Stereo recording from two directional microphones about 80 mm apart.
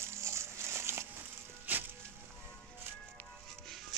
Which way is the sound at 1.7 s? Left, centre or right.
Right.